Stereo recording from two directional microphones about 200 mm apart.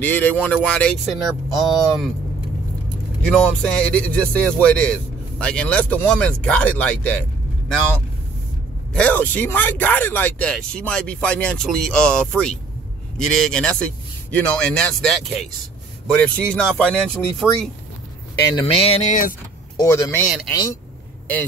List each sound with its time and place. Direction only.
0.0 s speech: 10° left (ahead or behind)
3.3 s speech: 5° left (ahead or behind)
18.7 s speech: 30° left (ahead or behind)
19.8 s speech: 15° left (ahead or behind)
20.2 s speech: centre (ahead or behind)